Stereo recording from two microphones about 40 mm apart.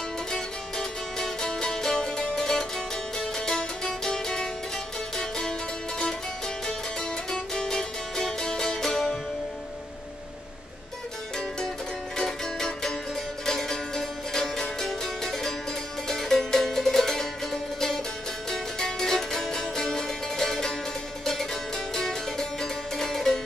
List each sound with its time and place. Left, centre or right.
0.3 s music: centre
7.0 s music: centre
12.2 s music: centre